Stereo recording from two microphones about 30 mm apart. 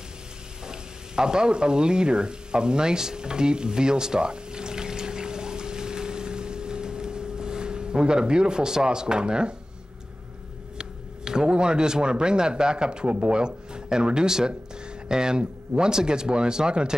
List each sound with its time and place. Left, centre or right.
0.7 s frying: right
10.8 s a sound: right
11.5 s speech: right
13.0 s speech: right
13.3 s speech: right